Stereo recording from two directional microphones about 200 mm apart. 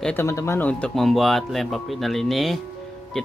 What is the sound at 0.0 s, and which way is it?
Speech, 10° left (ahead or behind).